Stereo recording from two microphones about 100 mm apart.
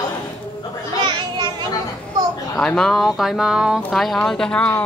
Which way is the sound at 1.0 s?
50° right (ahead or behind).